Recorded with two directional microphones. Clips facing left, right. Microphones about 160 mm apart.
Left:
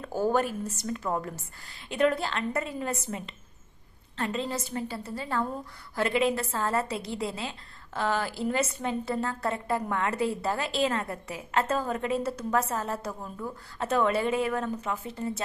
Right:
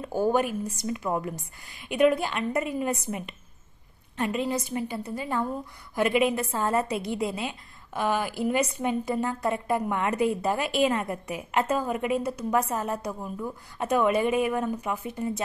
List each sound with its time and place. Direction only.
0.0 s a woman's voice: 15° right (ahead or behind)